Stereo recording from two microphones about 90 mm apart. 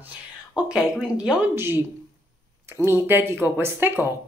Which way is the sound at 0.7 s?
10° right (ahead or behind).